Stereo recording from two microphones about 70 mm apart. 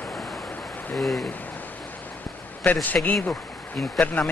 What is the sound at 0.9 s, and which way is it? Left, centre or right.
Speech, centre.